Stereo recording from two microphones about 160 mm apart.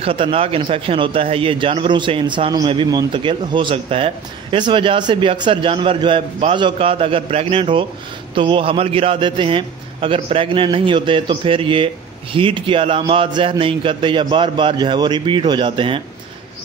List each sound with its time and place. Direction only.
0.0 s a man's voice: 35° right (ahead or behind)